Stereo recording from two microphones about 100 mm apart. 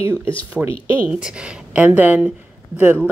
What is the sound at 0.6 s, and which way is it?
A woman's voice, 5° right (ahead or behind).